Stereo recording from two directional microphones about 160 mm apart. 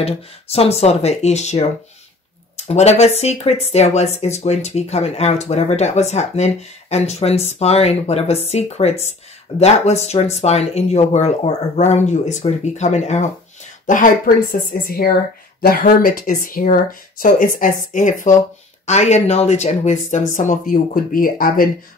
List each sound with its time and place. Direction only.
0.0 s speech: 40° left (ahead or behind); by 21.6 s 65° left (ahead or behind)